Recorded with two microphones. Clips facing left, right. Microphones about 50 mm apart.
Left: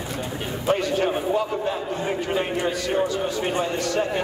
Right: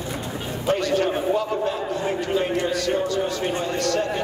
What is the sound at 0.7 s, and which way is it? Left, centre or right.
A man's voice, centre.